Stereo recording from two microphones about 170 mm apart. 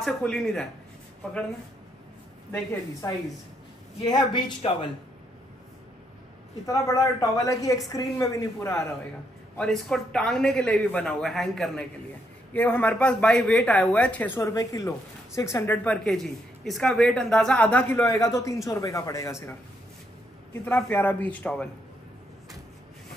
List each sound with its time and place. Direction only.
0.0 s speech: centre (ahead or behind)
3.0 s a woman's voice: 20° left (ahead or behind)
6.6 s a woman's voice: 20° left (ahead or behind)
9.6 s a woman's voice: 5° left (ahead or behind)
20.6 s speech: 10° left (ahead or behind)